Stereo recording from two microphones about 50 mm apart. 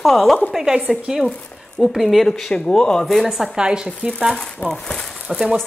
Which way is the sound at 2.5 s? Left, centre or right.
Centre.